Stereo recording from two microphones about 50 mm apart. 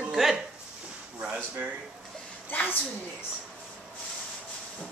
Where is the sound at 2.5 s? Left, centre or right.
Left.